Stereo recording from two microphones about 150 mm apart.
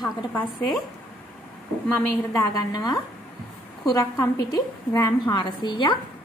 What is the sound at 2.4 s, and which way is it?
A woman's voice, 25° left (ahead or behind).